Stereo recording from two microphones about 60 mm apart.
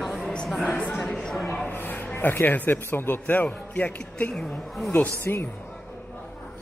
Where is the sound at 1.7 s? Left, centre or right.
Left.